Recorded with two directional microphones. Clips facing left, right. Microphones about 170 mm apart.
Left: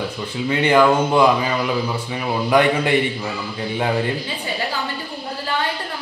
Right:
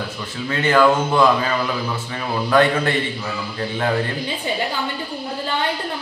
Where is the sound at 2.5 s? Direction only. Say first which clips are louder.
Even; 15° left (ahead or behind).